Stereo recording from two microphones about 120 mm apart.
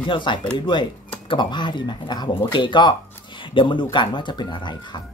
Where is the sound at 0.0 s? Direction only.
40° left (ahead or behind).